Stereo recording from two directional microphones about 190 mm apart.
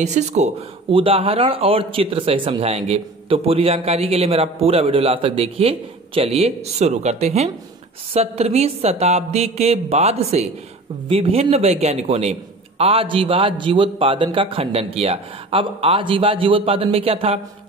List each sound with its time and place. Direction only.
0.0 s a man's voice: 35° right (ahead or behind)